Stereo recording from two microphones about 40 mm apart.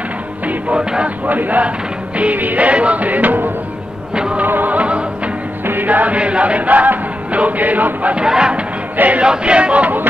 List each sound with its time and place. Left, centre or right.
0.7 s speech: right
1.2 s speech: right
2.1 s music: right
4.1 s music: right
4.5 s music: right
4.7 s music: right
8.2 s a sound: right
8.9 s choir: right
9.2 s a sound: right